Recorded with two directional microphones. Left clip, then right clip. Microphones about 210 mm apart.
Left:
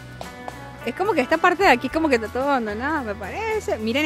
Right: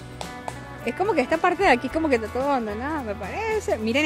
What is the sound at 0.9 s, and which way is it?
A woman's voice, 10° left (ahead or behind).